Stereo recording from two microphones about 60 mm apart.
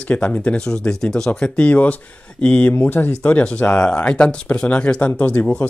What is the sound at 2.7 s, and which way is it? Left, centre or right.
Speech, left.